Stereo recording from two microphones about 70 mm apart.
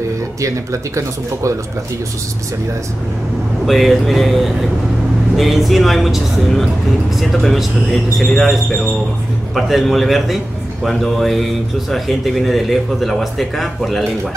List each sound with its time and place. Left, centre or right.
0.4 s speech: right
3.6 s speech: centre
9.6 s speech: centre